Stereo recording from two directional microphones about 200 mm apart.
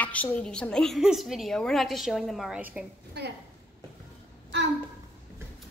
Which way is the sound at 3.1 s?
55° right (ahead or behind).